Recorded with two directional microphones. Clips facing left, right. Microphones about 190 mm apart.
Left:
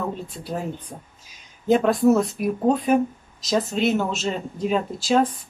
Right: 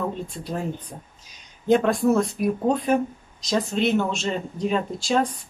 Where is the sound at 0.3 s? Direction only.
5° left (ahead or behind).